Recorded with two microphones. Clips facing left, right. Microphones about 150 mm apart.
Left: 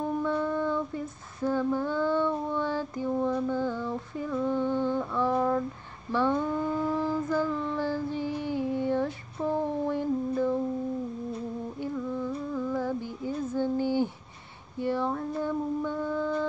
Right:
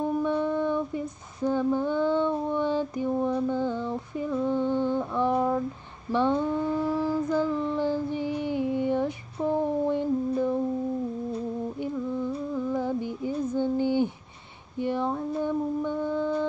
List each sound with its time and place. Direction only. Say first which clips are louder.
0.2 s child singing: right 2 dB; 20° right (ahead or behind)
11.8 s music: right 1 dB; 15° right (ahead or behind)
14.8 s mantra: right 1 dB; 20° right (ahead or behind)